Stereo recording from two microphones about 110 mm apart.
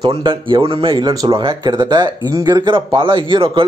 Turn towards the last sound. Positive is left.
turn(degrees=-50)  # may be behind; listen again after turning